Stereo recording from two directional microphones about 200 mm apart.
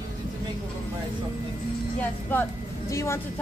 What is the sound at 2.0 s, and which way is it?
A woman's voice, 10° left (ahead or behind).